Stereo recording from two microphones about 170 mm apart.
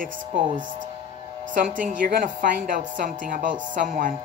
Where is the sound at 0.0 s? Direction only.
50° right (ahead or behind).